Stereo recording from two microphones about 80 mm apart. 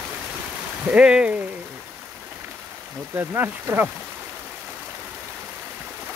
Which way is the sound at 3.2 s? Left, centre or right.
Right.